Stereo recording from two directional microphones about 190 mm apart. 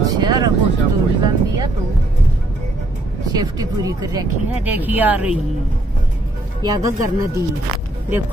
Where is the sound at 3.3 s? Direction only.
20° right (ahead or behind).